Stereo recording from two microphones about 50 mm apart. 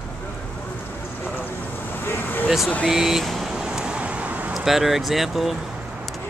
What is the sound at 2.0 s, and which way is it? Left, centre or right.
Vehicle, left.